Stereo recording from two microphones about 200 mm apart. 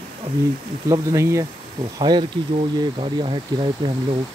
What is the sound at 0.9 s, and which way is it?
Speech, 15° right (ahead or behind).